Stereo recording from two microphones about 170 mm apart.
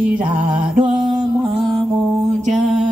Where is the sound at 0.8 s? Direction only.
25° right (ahead or behind).